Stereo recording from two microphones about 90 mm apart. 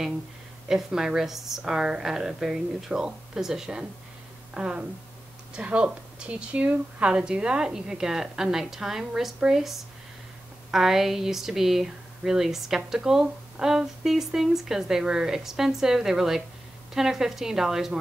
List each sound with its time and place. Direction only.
0.7 s speech: 5° right (ahead or behind)